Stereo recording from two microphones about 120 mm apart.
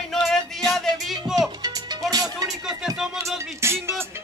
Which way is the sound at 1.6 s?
30° right (ahead or behind).